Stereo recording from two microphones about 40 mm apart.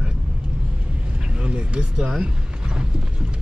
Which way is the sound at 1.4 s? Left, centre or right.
Right.